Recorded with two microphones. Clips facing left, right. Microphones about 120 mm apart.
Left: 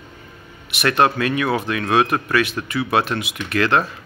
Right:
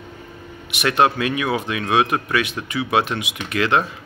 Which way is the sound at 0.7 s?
15° right (ahead or behind).